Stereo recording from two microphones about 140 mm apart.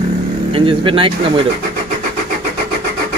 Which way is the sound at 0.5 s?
40° right (ahead or behind).